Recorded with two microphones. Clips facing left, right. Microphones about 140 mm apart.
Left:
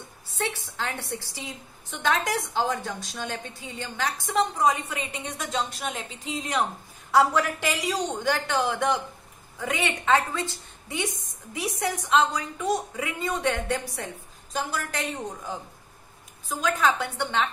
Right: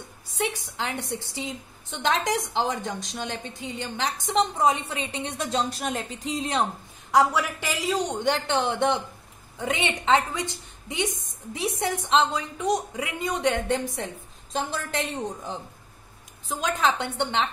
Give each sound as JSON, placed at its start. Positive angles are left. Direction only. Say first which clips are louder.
{"t": 0.4, "sound": "a woman's voice", "louder": "right 2 dB", "side_deg": -15}
{"t": 7.1, "sound": "a woman's voice", "louder": "even", "side_deg": -15}
{"t": 16.6, "sound": "a woman's voice", "louder": "left 1 dB", "side_deg": -20}